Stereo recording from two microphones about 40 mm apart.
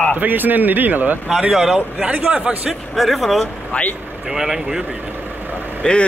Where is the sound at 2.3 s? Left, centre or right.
Right.